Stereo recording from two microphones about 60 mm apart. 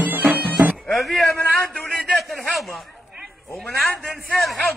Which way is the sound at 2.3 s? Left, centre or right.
Centre.